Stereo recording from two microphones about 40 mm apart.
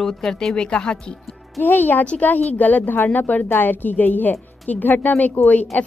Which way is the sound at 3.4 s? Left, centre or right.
Left.